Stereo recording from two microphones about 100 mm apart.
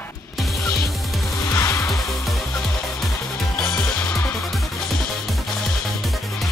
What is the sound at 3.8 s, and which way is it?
Music, 15° left (ahead or behind).